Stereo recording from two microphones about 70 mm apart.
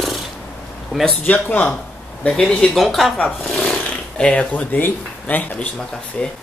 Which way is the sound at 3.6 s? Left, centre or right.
Centre.